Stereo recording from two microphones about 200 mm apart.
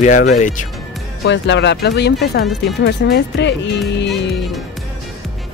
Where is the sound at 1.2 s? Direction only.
60° left (ahead or behind).